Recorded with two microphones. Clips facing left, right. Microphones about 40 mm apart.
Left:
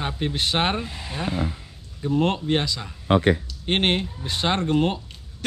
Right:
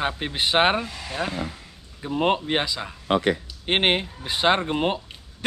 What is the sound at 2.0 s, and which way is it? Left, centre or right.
Speech, centre.